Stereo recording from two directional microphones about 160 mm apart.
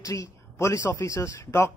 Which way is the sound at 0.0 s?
20° left (ahead or behind).